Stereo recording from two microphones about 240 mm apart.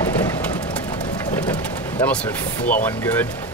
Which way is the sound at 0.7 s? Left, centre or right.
Centre.